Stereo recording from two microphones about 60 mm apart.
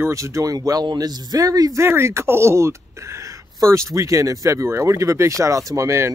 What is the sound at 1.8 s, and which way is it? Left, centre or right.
Speech, right.